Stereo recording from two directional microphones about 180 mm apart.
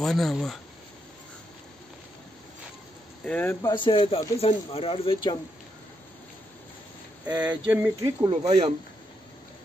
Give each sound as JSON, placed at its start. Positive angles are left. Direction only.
{"t": 0.0, "sound": "speech", "side_deg": 0}
{"t": 3.3, "sound": "speech", "side_deg": 10}
{"t": 3.6, "sound": "speech", "side_deg": 25}
{"t": 7.2, "sound": "a sound", "side_deg": -10}
{"t": 8.3, "sound": "speech", "side_deg": -35}